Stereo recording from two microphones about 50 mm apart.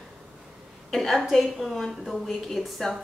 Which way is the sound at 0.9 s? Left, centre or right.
Centre.